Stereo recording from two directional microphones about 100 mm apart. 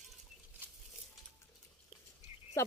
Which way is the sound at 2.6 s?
30° left (ahead or behind).